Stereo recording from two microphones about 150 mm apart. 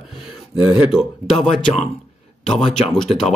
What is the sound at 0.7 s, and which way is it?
Speech, 5° right (ahead or behind).